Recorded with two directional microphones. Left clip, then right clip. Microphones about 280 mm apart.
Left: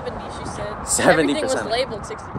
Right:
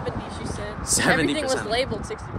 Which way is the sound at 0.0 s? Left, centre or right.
Right.